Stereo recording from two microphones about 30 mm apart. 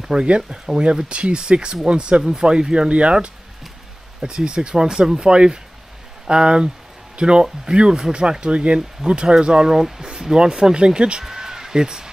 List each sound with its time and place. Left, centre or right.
0.0 s speech: right
1.0 s speech: right
2.9 s speech: right
4.2 s speech: right
11.2 s a sound: centre